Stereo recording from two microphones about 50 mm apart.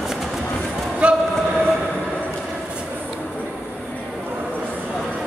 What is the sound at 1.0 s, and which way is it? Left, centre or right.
Train, right.